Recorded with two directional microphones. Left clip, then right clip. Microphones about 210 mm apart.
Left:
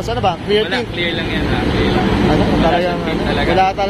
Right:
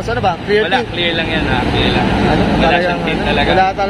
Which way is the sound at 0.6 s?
25° right (ahead or behind).